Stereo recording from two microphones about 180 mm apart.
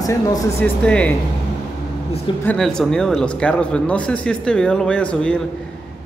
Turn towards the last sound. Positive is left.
turn(degrees=5)  # may be behind; listen again after turning